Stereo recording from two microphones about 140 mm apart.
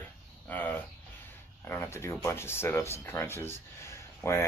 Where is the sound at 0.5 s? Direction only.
10° left (ahead or behind).